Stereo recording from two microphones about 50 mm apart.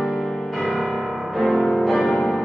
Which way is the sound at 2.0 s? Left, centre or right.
Centre.